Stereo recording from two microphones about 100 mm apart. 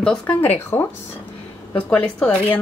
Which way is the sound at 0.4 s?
20° left (ahead or behind).